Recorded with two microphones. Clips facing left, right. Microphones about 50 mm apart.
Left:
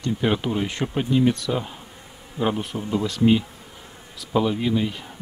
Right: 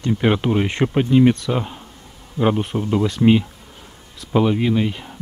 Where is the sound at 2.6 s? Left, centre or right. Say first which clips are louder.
Right 5 dB; right.